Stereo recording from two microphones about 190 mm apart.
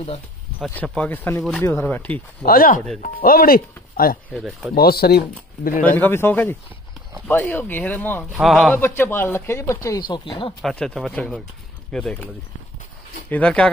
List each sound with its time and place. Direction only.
0.7 s speech: 5° left (ahead or behind)
2.4 s speech: 50° left (ahead or behind)
4.4 s speech: centre (ahead or behind)
4.7 s speech: 55° left (ahead or behind)
5.9 s speech: 10° left (ahead or behind)
8.8 s speech: 10° left (ahead or behind)
10.6 s speech: 5° left (ahead or behind)
13.3 s speech: 5° left (ahead or behind)